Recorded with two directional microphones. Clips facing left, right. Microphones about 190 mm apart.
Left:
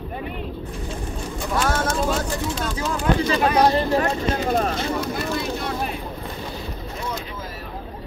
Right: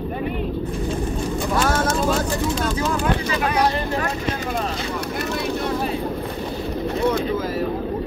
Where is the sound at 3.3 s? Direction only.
35° left (ahead or behind).